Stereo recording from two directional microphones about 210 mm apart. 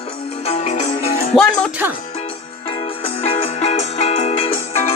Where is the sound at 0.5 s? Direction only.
30° left (ahead or behind).